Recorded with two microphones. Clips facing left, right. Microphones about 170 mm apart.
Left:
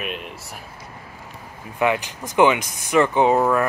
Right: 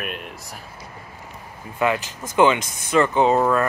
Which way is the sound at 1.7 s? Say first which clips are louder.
Left 1 dB; 15° left (ahead or behind).